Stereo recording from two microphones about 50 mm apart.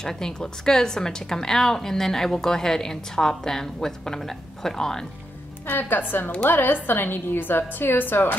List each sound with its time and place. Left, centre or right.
0.0 s a woman's voice: centre
5.7 s a woman's voice: left